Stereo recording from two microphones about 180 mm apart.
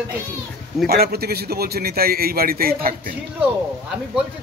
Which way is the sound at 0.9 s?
60° right (ahead or behind).